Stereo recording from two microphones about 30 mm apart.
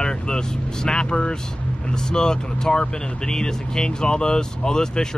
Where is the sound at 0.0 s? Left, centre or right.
Left.